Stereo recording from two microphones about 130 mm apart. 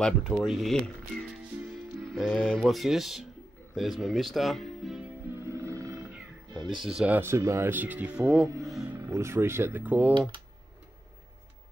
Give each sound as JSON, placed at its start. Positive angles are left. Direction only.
{"t": 0.0, "sound": "speech", "side_deg": 0}
{"t": 2.1, "sound": "music", "side_deg": 5}
{"t": 2.6, "sound": "speech", "side_deg": 0}
{"t": 5.3, "sound": "music", "side_deg": -20}
{"t": 7.0, "sound": "speech", "side_deg": -15}
{"t": 8.6, "sound": "music", "side_deg": 0}
{"t": 8.9, "sound": "speech", "side_deg": -20}